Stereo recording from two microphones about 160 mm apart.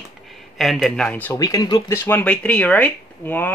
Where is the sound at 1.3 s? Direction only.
20° left (ahead or behind).